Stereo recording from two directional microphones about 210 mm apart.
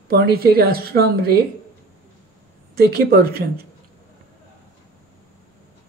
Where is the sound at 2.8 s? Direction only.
50° right (ahead or behind).